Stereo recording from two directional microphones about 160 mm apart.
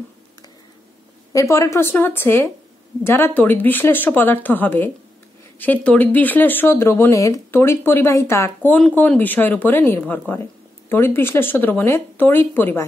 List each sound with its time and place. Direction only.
1.3 s speech: 20° left (ahead or behind)